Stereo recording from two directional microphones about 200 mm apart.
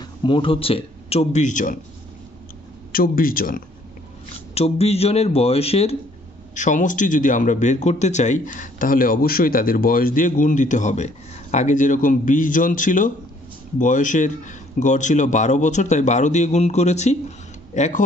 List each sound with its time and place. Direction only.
0.0 s a man's voice: 25° left (ahead or behind); by 1.8 s 40° left (ahead or behind)
2.9 s a man's voice: 45° left (ahead or behind)
4.6 s a man's voice: 30° left (ahead or behind)